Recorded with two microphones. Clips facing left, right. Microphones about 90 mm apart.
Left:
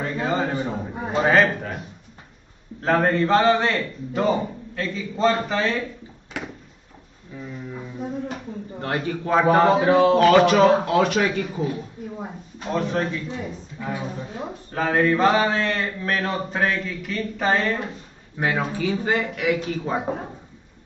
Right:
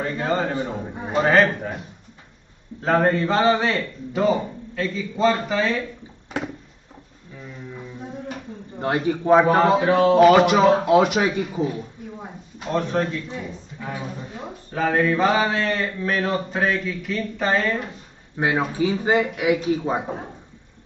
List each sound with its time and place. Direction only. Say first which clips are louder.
0.0 s a man's voice: right 1 dB; 5° left (ahead or behind)
1.3 s a man's voice: right 1 dB; centre (ahead or behind)
2.8 s a man's voice: right 1 dB; centre (ahead or behind)
8.8 s a man's voice: right 5 dB; 20° right (ahead or behind)
9.4 s a man's voice: even; centre (ahead or behind)
10.1 s speech: right 1 dB; 15° right (ahead or behind)
12.7 s a man's voice: right 1 dB; centre (ahead or behind)
14.7 s a man's voice: even; centre (ahead or behind)
18.4 s speech: right 2 dB; 15° right (ahead or behind)